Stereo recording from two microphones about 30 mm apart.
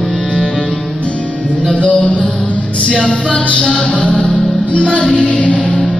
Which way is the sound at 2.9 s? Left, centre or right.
Left.